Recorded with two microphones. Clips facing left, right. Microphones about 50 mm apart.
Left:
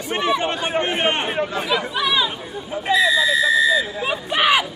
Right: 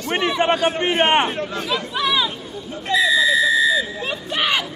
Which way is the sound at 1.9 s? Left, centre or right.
Centre.